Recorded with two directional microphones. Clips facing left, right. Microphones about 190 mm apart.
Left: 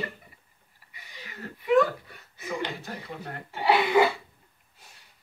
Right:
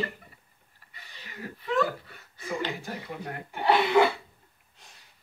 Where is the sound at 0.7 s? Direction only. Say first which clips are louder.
Left 3 dB; 15° left (ahead or behind).